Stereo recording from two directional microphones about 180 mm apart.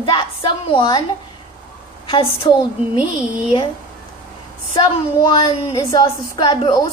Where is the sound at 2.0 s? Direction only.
30° left (ahead or behind).